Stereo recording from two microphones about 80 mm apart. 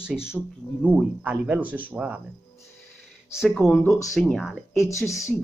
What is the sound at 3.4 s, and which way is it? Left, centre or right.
Speech, centre.